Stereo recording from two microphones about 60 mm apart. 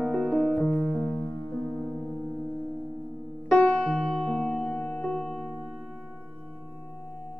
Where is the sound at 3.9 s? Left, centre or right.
Centre.